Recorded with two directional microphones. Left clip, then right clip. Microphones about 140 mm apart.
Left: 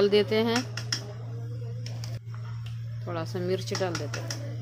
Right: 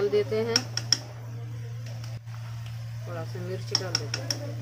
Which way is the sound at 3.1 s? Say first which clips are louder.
Left 6 dB; 75° left (ahead or behind).